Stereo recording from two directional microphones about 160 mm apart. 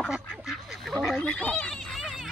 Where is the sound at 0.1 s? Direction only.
5° right (ahead or behind).